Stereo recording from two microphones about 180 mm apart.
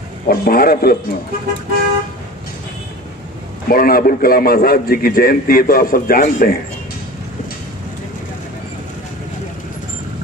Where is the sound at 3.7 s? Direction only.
55° left (ahead or behind).